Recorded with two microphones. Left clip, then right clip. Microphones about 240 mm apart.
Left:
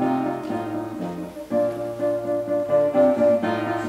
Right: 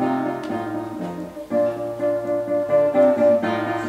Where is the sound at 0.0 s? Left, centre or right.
Centre.